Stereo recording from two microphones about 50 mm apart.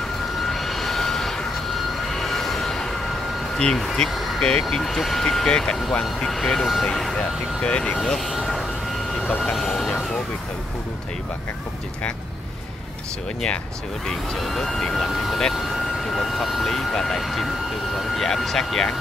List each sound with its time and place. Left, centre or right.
0.4 s vehicle: centre
3.5 s speech: centre
4.6 s speech: centre
6.9 s speech: centre
8.3 s vehicle: centre
14.0 s speech: centre